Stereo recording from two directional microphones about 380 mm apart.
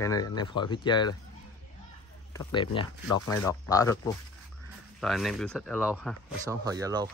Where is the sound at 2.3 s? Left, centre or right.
Centre.